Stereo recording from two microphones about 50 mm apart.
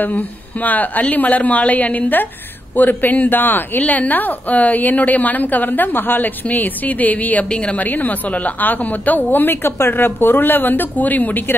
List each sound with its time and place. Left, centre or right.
0.0 s a woman's voice: left
7.4 s a woman's voice: left